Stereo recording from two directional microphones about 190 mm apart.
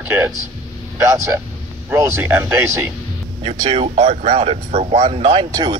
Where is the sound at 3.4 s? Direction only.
30° right (ahead or behind).